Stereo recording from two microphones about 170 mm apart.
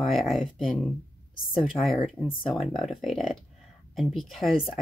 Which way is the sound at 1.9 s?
Centre (ahead or behind).